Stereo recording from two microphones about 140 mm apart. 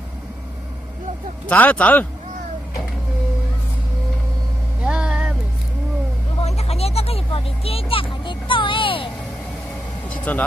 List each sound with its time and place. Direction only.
1.5 s speech: 10° left (ahead or behind)
4.8 s vehicle: 5° right (ahead or behind)
6.4 s vehicle: 50° left (ahead or behind)
10.0 s vehicle: 10° left (ahead or behind)